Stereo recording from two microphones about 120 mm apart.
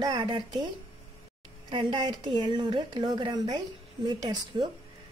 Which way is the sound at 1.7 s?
45° right (ahead or behind).